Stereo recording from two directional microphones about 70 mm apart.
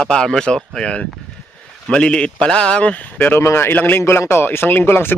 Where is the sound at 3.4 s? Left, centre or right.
Left.